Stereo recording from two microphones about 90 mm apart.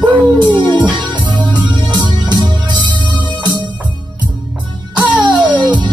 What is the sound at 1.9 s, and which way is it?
Music, 55° right (ahead or behind).